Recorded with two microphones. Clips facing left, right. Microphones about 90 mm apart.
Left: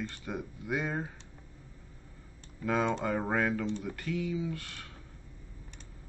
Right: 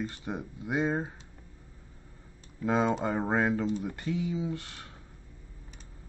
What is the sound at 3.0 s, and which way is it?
Speech, 25° right (ahead or behind).